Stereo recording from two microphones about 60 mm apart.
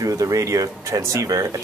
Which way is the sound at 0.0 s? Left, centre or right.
Right.